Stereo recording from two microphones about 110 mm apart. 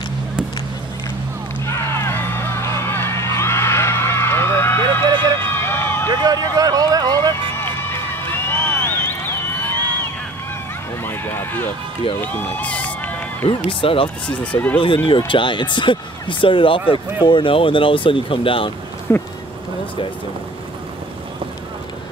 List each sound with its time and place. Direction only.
1.7 s a sound: 25° left (ahead or behind)
4.8 s vehicle: 45° right (ahead or behind)
5.4 s a sound: 20° left (ahead or behind)
6.0 s music: 35° right (ahead or behind)
7.5 s run: 20° left (ahead or behind)
11.1 s a sound: 20° left (ahead or behind)
13.7 s speech: 50° left (ahead or behind)
14.2 s speech: 10° left (ahead or behind)
15.0 s speech: 50° left (ahead or behind)
19.1 s speech: 25° left (ahead or behind)